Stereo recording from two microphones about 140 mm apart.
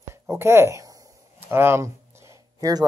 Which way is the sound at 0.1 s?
20° right (ahead or behind).